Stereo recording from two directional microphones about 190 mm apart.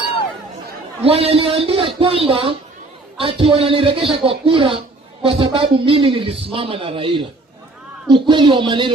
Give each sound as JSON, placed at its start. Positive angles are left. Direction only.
{"t": 1.0, "sound": "speech", "side_deg": -30}